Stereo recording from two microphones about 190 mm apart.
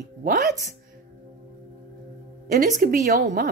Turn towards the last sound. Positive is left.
turn(degrees=-40)  # may be behind; listen again after turning